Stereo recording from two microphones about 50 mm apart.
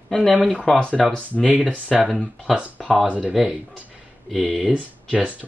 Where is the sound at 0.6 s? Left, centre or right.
Centre.